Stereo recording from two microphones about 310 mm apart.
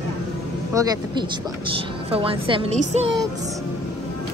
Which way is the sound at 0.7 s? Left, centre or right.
Centre.